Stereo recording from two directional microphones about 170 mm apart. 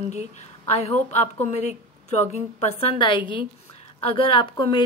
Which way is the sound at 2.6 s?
30° left (ahead or behind).